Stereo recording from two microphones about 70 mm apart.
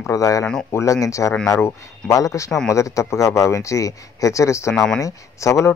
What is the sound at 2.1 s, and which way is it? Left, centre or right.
Speech, left.